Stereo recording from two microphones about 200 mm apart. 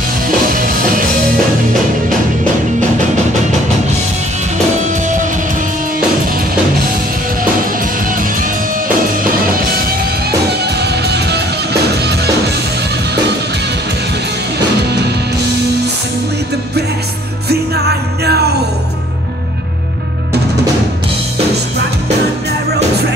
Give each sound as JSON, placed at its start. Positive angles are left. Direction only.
{"t": 0.5, "sound": "music", "side_deg": -45}
{"t": 8.1, "sound": "music", "side_deg": -45}
{"t": 10.6, "sound": "music", "side_deg": -55}
{"t": 17.5, "sound": "music", "side_deg": -55}